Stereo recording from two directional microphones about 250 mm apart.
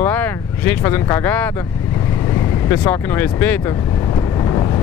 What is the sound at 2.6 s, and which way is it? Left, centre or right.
Speech, centre.